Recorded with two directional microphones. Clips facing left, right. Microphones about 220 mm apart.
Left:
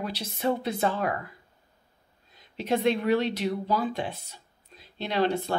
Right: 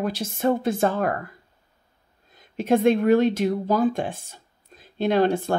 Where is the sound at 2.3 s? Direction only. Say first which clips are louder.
Right 6 dB; 50° right (ahead or behind).